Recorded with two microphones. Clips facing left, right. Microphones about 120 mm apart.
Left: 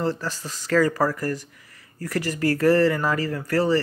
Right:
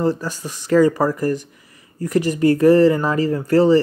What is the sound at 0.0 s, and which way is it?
Speech, 15° right (ahead or behind).